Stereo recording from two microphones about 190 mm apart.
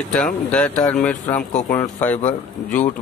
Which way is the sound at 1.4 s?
45° left (ahead or behind).